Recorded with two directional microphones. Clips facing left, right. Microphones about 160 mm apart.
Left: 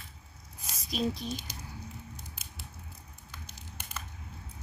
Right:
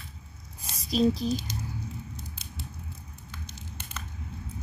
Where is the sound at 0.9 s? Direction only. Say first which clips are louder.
Right 8 dB; 35° right (ahead or behind).